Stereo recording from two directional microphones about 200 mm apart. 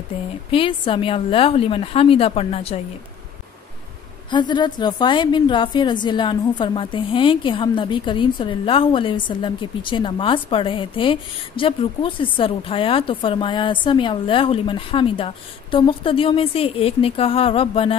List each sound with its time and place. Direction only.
0.1 s a woman's voice: 30° left (ahead or behind)
4.3 s a woman's voice: 20° left (ahead or behind)